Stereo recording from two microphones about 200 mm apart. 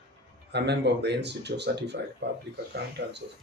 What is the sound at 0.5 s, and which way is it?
Speech, 55° right (ahead or behind).